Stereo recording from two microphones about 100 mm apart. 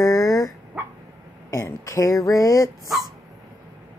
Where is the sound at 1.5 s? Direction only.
30° left (ahead or behind).